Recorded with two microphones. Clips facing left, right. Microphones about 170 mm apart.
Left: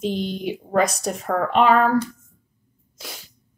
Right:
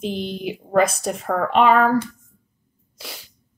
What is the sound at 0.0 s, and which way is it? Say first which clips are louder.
Speech: left 1 dB; centre (ahead or behind).